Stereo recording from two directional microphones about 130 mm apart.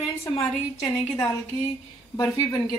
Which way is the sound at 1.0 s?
20° left (ahead or behind).